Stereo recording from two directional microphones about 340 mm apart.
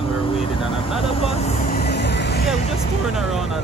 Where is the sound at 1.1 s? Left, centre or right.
Centre.